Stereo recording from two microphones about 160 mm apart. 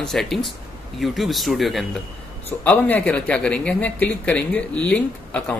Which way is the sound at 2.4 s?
10° left (ahead or behind).